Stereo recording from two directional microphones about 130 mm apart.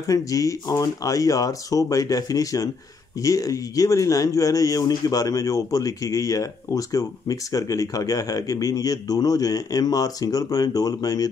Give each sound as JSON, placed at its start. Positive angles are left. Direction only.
{"t": 0.0, "sound": "speech", "side_deg": 25}